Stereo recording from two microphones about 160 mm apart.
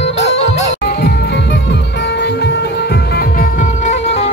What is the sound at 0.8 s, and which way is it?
Music, 90° left.